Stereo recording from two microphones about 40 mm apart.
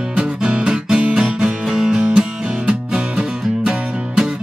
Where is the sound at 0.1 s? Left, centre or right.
Right.